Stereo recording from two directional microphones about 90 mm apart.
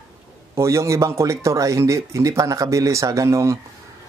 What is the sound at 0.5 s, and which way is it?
Speech, 35° right (ahead or behind).